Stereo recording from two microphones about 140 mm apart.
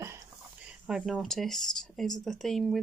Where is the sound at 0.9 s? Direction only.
5° right (ahead or behind).